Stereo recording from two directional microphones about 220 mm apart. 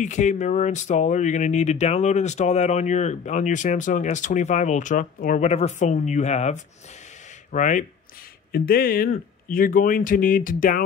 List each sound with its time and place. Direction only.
0.0 s speech: 35° left (ahead or behind)